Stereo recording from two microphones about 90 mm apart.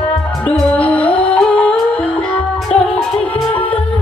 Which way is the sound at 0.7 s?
15° left (ahead or behind).